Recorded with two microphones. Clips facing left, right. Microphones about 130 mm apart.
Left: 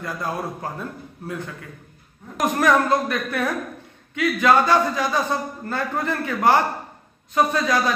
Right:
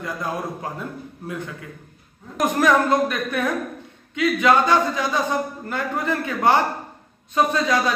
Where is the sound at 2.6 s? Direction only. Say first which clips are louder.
Right 1 dB; 20° right (ahead or behind).